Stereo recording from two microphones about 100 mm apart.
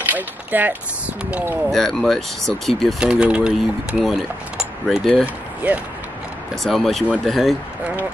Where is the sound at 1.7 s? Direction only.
5° left (ahead or behind).